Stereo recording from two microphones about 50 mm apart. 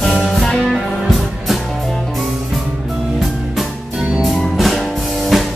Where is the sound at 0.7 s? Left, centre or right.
Centre.